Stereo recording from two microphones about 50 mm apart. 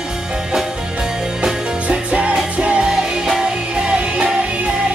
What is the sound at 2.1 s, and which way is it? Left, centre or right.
Music, right.